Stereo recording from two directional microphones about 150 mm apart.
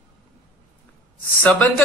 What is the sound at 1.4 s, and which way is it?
Speech, 10° left (ahead or behind).